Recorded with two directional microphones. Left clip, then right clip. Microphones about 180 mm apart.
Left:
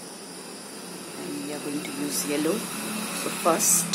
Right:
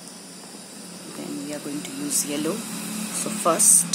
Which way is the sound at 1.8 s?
25° right (ahead or behind).